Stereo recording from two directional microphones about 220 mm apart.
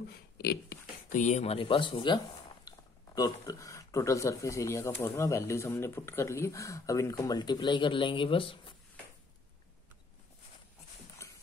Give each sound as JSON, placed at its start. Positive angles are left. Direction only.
{"t": 0.1, "sound": "speech", "side_deg": 45}